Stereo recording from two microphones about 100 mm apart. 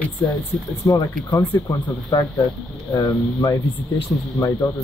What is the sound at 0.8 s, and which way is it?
Speech, 35° left (ahead or behind).